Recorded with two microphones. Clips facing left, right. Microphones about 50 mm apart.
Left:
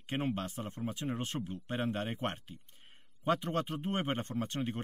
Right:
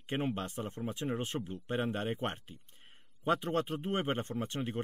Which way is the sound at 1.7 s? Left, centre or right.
Centre.